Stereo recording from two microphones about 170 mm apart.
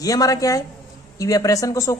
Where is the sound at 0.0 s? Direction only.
20° left (ahead or behind).